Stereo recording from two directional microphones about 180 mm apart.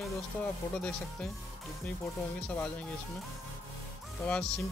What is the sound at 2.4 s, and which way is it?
Speech, 5° left (ahead or behind).